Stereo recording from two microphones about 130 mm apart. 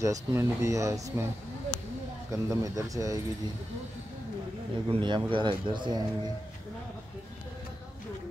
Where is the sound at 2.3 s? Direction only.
25° right (ahead or behind).